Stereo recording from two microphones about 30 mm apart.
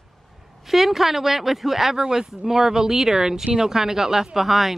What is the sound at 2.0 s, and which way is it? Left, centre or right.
A woman's voice, centre.